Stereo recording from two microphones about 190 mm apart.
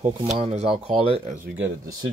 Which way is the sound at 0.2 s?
30° right (ahead or behind).